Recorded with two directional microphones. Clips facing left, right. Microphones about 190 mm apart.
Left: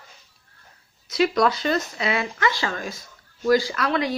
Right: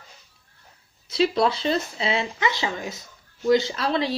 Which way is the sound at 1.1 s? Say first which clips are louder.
Left 1 dB; 30° right (ahead or behind).